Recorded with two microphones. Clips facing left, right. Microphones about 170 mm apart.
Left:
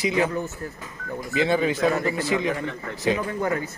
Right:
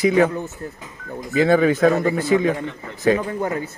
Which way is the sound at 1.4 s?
50° right (ahead or behind).